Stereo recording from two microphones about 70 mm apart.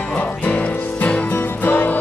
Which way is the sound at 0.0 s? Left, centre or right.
Left.